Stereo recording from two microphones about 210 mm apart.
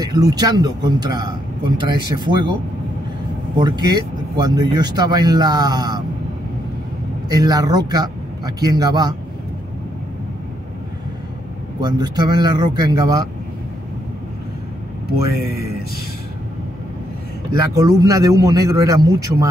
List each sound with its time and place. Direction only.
0.0 s speech: 20° right (ahead or behind)
3.5 s speech: 20° right (ahead or behind)
7.2 s speech: 20° right (ahead or behind)
11.8 s speech: 20° right (ahead or behind)
17.5 s a man's voice: 15° right (ahead or behind)